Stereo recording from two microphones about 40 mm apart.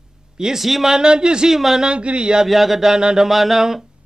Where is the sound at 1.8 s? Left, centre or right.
Right.